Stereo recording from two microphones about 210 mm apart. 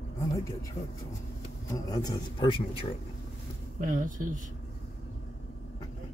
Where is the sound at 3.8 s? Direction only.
40° right (ahead or behind).